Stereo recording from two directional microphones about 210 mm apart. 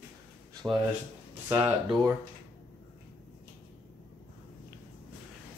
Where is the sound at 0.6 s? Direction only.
10° right (ahead or behind).